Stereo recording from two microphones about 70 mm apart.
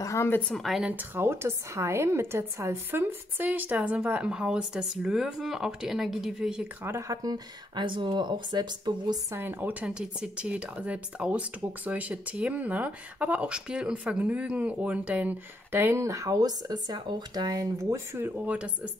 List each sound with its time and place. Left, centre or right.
0.0 s a sound: left
0.6 s a woman's voice: centre
0.8 s speech: right; by 6.7 s centre
7.2 s speech: right
9.3 s speech: right
9.8 s speech: centre; by 16.0 s right
16.0 s speech: right
17.9 s speech: right
18.3 s speech: centre